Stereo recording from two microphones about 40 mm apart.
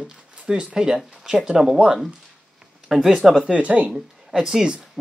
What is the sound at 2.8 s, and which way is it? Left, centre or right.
Speech, centre.